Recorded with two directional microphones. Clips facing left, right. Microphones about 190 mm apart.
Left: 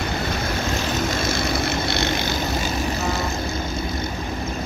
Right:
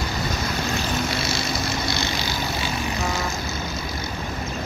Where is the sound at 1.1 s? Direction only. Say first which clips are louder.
Left 3 dB; 50° left (ahead or behind).